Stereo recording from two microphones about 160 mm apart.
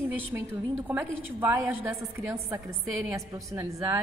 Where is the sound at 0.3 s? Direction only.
15° right (ahead or behind).